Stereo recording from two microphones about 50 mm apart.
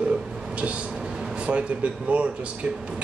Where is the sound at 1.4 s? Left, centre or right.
Right.